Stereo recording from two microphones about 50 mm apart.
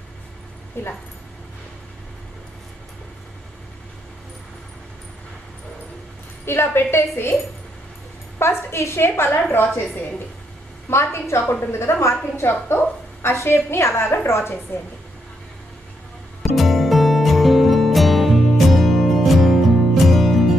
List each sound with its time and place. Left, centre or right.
0.8 s a woman's voice: left
6.4 s a woman's voice: left
8.4 s a woman's voice: left
10.9 s a woman's voice: left
11.9 s a woman's voice: left
12.4 s a woman's voice: left
14.7 s a woman's voice: left
16.4 s music: centre